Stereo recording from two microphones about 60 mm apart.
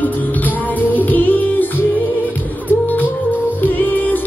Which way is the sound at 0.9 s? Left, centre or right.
Left.